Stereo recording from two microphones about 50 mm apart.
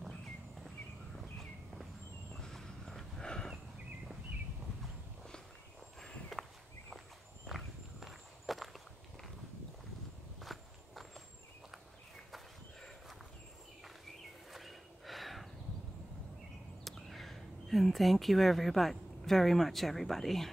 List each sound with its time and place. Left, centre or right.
1.1 s a sound: centre
5.9 s walk: centre
7.4 s walk: centre
10.4 s walk: centre
14.5 s snort: centre
16.9 s speech: centre